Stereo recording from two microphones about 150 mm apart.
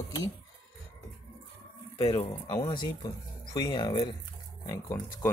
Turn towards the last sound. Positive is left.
turn(degrees=20)  # may be behind; listen again after turning